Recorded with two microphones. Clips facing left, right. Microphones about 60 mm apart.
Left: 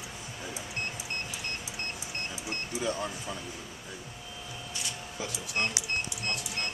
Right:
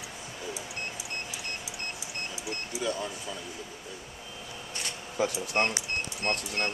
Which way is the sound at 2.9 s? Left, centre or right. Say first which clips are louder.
Right 1 dB; left.